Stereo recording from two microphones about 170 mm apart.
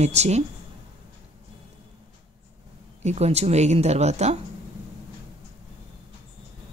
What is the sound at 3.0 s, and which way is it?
Speech, 40° right (ahead or behind).